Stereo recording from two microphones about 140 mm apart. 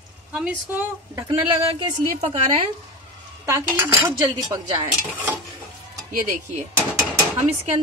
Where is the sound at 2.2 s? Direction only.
45° right (ahead or behind).